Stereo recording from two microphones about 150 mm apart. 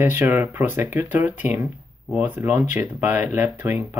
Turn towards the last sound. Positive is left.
turn(degrees=-15)  # may be behind; listen again after turning